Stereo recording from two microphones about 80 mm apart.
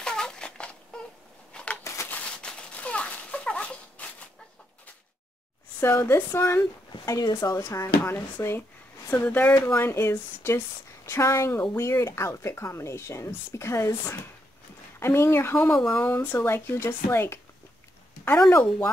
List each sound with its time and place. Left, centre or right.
0.0 s a sound: centre
5.8 s a woman's voice: left
7.2 s a woman's voice: left
15.0 s a woman's voice: left
15.7 s speech: centre
16.0 s a woman's voice: left
18.5 s speech: left